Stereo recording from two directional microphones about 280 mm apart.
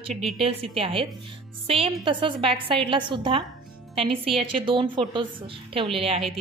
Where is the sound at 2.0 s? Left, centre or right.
Centre.